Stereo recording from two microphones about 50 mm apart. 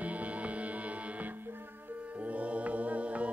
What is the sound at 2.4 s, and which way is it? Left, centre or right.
A capella, right.